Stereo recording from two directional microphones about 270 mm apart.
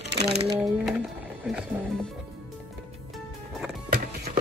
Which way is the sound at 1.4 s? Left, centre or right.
Centre.